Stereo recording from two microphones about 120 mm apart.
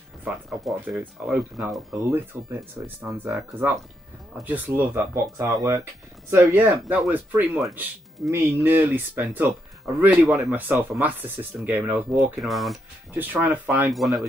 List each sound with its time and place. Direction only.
0.5 s speech: 5° right (ahead or behind)
2.0 s speech: 25° right (ahead or behind)
2.8 s speech: 15° right (ahead or behind)
3.1 s speech: centre (ahead or behind)
4.5 s speech: 15° right (ahead or behind)
5.4 s speech: 30° right (ahead or behind)
12.4 s speech: centre (ahead or behind)
13.1 s speech: 15° right (ahead or behind)
13.9 s speech: centre (ahead or behind)